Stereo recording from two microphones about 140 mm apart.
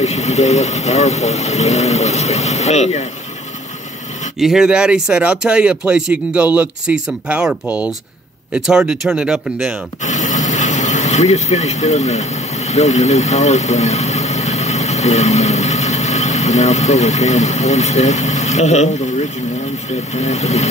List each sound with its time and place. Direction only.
0.0 s speech: 50° left (ahead or behind)
4.4 s speech: 5° right (ahead or behind)
10.0 s speech: 60° left (ahead or behind)